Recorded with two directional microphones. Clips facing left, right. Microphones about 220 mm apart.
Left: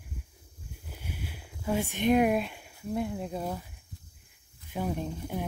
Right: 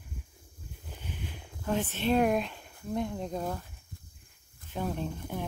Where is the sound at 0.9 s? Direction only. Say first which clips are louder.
Left 1 dB; 10° left (ahead or behind).